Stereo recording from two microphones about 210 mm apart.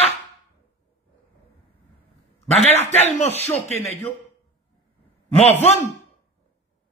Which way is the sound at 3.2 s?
30° left (ahead or behind).